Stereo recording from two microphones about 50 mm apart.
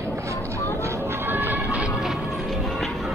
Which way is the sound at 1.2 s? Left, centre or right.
Right.